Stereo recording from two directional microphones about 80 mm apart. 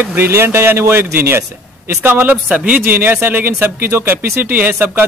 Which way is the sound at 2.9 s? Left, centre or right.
Right.